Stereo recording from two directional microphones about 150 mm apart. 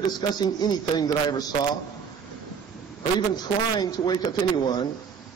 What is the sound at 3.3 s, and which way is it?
A man's voice, 25° left (ahead or behind).